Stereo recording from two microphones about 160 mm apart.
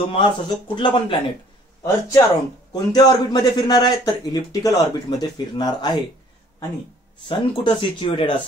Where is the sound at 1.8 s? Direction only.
20° left (ahead or behind).